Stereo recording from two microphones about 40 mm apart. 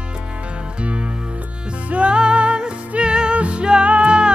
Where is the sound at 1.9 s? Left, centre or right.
Right.